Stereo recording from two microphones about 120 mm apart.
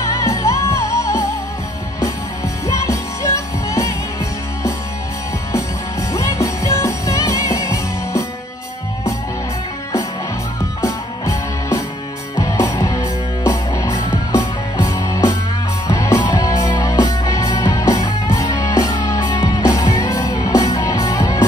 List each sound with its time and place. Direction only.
0.2 s music: 25° left (ahead or behind)
2.8 s music: 25° left (ahead or behind)
5.5 s music: 25° left (ahead or behind)
10.8 s music: 30° left (ahead or behind)